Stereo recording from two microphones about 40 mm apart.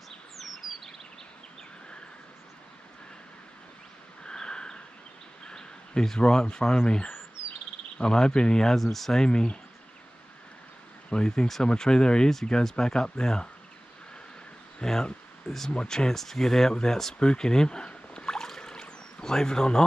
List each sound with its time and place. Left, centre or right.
4.2 s a sound: centre
5.4 s bird: centre
6.8 s speech: left
8.7 s speech: centre
9.2 s speech: centre
11.1 s speech: centre
14.8 s speech: centre
17.2 s a sound: left